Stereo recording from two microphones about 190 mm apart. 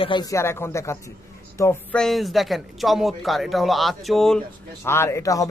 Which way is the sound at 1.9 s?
Centre (ahead or behind).